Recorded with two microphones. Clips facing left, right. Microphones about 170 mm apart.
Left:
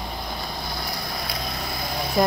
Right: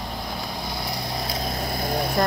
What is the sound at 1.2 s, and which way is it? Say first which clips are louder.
Vehicle: right 3 dB; 45° right (ahead or behind).